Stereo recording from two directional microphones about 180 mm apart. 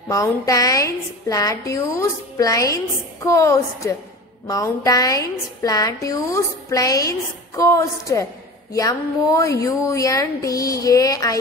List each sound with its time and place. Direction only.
0.1 s a woman's voice: 20° left (ahead or behind)